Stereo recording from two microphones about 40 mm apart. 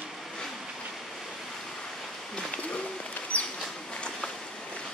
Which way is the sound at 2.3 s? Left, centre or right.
Left.